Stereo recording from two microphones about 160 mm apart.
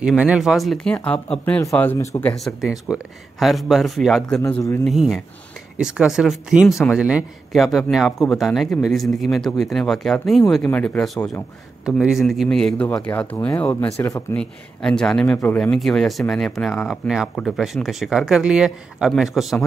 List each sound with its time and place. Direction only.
0.0 s speech: 5° right (ahead or behind); by 2.3 s 10° left (ahead or behind)
2.3 s speech: centre (ahead or behind)
11.8 s speech: 5° right (ahead or behind); by 14.2 s 20° left (ahead or behind)
14.3 s speech: 5° left (ahead or behind)